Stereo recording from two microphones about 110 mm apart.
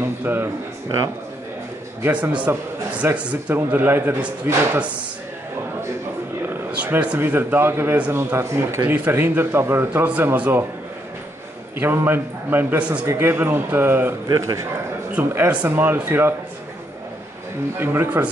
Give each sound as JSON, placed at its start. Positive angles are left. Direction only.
{"t": 0.2, "sound": "a man's voice", "side_deg": -15}
{"t": 2.0, "sound": "a man's voice", "side_deg": -15}
{"t": 6.5, "sound": "a man's voice", "side_deg": -15}
{"t": 11.8, "sound": "a man's voice", "side_deg": -20}
{"t": 13.0, "sound": "a man's voice", "side_deg": -25}
{"t": 14.3, "sound": "a man's voice", "side_deg": -30}
{"t": 15.1, "sound": "a man's voice", "side_deg": -20}
{"t": 17.7, "sound": "a man's voice", "side_deg": -20}